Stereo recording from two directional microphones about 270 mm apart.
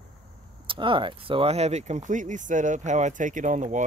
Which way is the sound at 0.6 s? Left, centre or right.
Centre.